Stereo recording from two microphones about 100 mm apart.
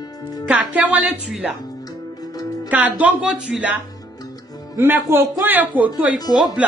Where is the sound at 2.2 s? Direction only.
40° left (ahead or behind).